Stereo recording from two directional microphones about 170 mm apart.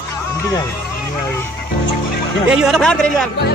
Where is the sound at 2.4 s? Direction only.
5° right (ahead or behind).